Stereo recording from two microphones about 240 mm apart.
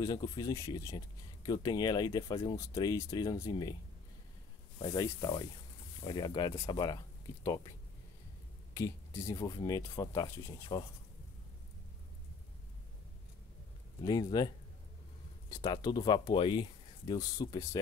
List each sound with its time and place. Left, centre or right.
0.0 s speech: centre
4.7 s speech: centre
8.7 s speech: centre
14.0 s speech: centre
15.5 s speech: centre